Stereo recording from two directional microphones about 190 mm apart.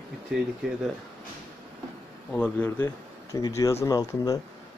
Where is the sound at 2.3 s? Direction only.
10° left (ahead or behind).